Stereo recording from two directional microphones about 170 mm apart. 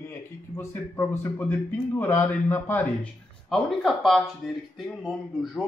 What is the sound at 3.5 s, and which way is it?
Speech, centre (ahead or behind).